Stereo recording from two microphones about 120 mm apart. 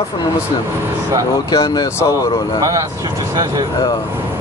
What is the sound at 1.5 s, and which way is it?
Speech, 35° left (ahead or behind).